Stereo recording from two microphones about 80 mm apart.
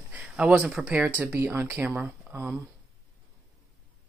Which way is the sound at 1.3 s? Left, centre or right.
Right.